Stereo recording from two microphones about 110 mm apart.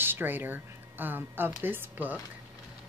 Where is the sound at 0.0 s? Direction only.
20° right (ahead or behind).